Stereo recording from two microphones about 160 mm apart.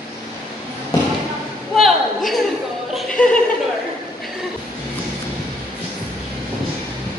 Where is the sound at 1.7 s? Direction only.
Centre (ahead or behind).